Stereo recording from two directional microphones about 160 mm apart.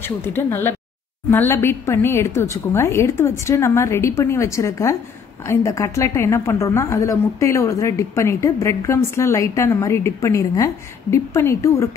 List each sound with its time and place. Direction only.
0.0 s a woman's voice: 15° left (ahead or behind)